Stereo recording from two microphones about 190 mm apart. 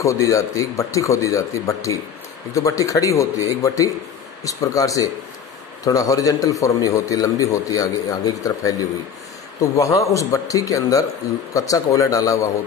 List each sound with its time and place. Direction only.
0.0 s a man's voice: 15° left (ahead or behind)